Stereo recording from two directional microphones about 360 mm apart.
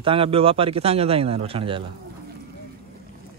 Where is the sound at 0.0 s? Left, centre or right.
Centre.